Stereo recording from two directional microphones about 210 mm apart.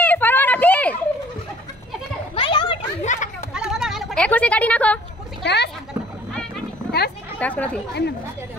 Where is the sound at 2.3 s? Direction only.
25° left (ahead or behind).